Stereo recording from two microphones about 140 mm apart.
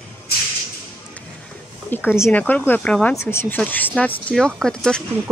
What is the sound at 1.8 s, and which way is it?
Speech, 15° left (ahead or behind).